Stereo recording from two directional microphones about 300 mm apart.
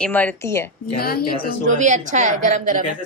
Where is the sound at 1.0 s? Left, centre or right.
Left.